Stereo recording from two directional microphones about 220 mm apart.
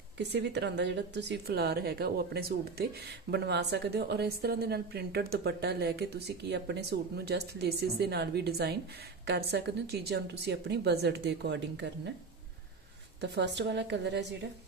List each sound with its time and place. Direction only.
0.2 s speech: 50° right (ahead or behind)
13.2 s speech: 50° right (ahead or behind)